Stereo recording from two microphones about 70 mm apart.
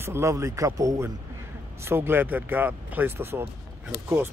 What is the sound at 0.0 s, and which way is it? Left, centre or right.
Speech, right.